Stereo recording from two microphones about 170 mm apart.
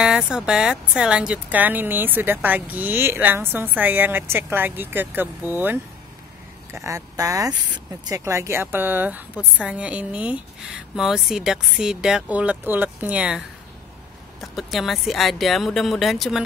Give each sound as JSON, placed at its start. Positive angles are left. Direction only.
{"t": 0.0, "sound": "speech", "side_deg": -5}
{"t": 14.4, "sound": "speech", "side_deg": 0}